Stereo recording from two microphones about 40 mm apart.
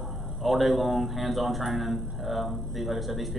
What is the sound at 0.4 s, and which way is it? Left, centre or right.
A man's voice, centre.